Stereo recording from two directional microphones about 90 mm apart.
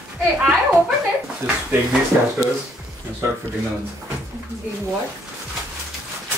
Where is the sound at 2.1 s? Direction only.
20° right (ahead or behind).